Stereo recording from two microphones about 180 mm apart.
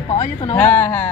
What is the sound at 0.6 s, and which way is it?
Speech, 10° left (ahead or behind).